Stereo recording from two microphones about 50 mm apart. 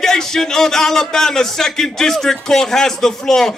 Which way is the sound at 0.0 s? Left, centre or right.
Centre.